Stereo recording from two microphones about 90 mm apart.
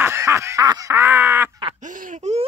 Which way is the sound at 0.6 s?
45° right (ahead or behind).